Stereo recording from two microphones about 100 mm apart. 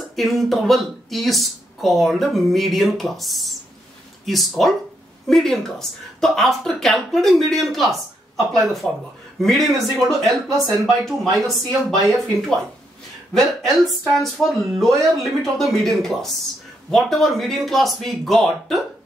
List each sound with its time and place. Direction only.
0.1 s speech: centre (ahead or behind)